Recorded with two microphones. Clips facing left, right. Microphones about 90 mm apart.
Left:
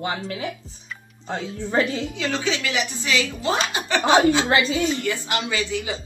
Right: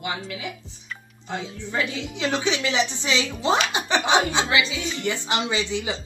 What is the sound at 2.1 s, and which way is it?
Speech, 20° right (ahead or behind).